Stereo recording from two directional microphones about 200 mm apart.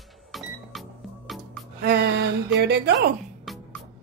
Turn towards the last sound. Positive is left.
turn(degrees=0)  # may be behind; listen again after turning